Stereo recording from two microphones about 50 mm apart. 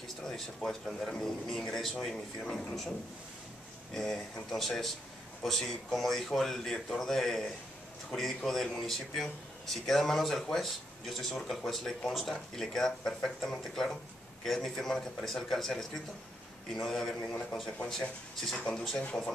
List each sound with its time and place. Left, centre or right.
0.2 s speech: centre
3.9 s speech: centre